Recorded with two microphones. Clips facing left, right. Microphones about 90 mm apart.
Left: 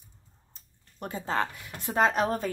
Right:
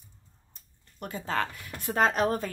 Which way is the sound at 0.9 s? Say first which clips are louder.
Left 1 dB; 25° left (ahead or behind).